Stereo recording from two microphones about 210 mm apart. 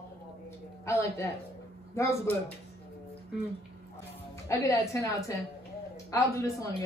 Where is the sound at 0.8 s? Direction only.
15° left (ahead or behind).